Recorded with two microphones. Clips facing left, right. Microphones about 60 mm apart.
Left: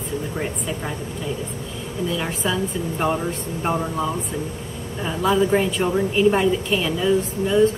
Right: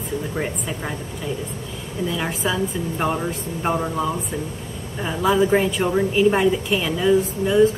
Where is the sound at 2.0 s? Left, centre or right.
Centre.